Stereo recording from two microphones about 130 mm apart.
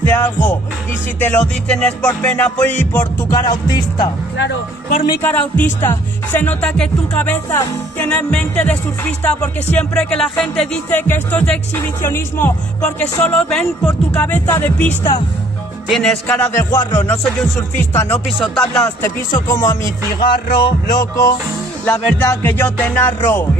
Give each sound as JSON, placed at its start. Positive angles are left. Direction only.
{"t": 0.0, "sound": "music", "side_deg": 15}
{"t": 3.2, "sound": "speech", "side_deg": 30}
{"t": 5.2, "sound": "music", "side_deg": 15}
{"t": 10.9, "sound": "music", "side_deg": 15}
{"t": 15.9, "sound": "music", "side_deg": 5}
{"t": 17.4, "sound": "music", "side_deg": 5}
{"t": 17.9, "sound": "music", "side_deg": 15}
{"t": 19.4, "sound": "music", "side_deg": 25}